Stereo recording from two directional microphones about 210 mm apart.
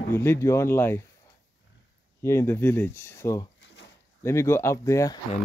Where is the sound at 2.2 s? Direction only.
15° left (ahead or behind).